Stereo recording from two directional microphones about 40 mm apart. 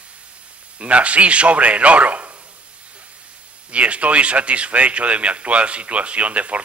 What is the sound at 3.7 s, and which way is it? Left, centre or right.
Speech, right.